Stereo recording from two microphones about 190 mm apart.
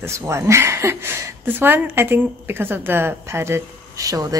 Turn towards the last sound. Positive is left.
turn(degrees=-20)  # may be behind; listen again after turning